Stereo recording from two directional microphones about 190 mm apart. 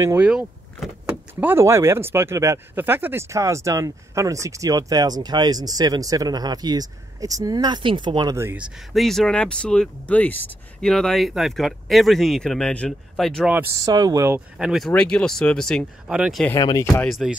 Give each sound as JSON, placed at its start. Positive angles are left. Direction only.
{"t": 0.0, "sound": "speech", "side_deg": -10}
{"t": 13.5, "sound": "speech", "side_deg": -15}
{"t": 14.6, "sound": "speech", "side_deg": 0}
{"t": 16.4, "sound": "speech", "side_deg": 15}
{"t": 17.0, "sound": "speech", "side_deg": 0}